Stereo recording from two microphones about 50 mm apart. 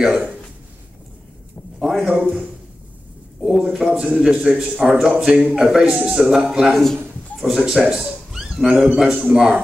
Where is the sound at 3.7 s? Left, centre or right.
Centre.